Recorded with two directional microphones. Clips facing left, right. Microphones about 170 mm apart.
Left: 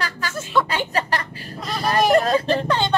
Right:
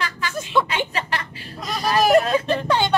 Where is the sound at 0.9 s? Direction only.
40° left (ahead or behind).